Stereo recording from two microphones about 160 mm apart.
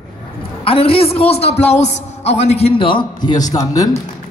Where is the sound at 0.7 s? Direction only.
35° left (ahead or behind).